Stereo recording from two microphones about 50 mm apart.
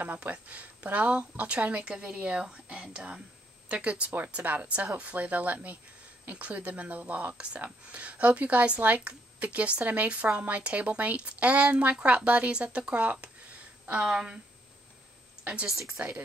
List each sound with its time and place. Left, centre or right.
0.0 s speech: right
14.0 s speech: centre
16.0 s speech: right